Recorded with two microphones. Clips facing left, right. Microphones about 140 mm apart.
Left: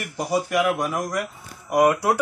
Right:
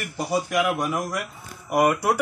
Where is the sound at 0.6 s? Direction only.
Centre (ahead or behind).